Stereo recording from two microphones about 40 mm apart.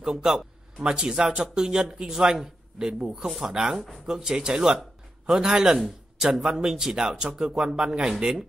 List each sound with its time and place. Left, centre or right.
0.0 s speech: centre
3.4 s speech: centre